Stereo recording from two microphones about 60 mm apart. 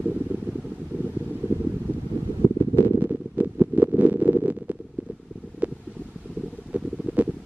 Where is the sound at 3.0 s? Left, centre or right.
Right.